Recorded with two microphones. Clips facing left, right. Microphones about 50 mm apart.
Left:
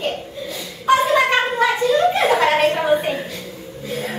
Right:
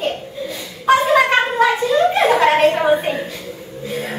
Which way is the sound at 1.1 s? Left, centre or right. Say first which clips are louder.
Right 2 dB; centre.